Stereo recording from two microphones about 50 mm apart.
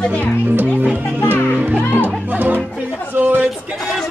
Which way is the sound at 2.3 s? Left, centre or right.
Right.